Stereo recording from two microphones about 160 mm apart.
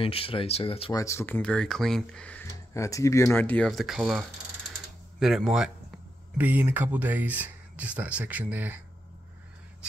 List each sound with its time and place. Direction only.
0.0 s speech: 35° left (ahead or behind)
0.9 s speech: 15° left (ahead or behind)
2.4 s speech: 20° left (ahead or behind)
3.3 s speech: 10° left (ahead or behind); by 8.7 s 10° right (ahead or behind)